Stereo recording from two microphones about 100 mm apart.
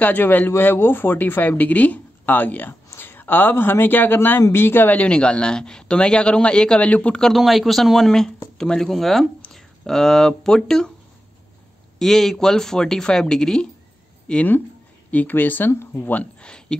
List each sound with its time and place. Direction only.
0.0 s a man's voice: 15° left (ahead or behind)
12.0 s a woman's voice: 5° left (ahead or behind)